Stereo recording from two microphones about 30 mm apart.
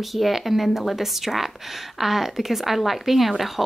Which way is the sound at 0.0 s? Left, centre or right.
Centre.